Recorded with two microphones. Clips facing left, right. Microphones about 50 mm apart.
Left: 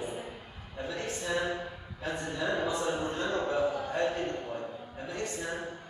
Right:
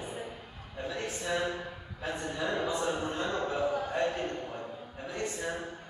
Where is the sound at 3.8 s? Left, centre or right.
Centre.